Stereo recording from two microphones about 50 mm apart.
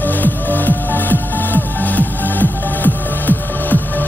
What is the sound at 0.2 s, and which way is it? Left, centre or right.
Music, left.